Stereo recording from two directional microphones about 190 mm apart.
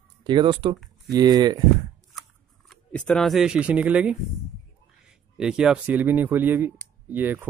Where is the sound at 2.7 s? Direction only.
5° left (ahead or behind).